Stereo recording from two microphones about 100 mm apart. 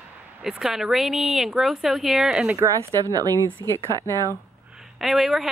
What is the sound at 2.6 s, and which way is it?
Speech, 30° right (ahead or behind).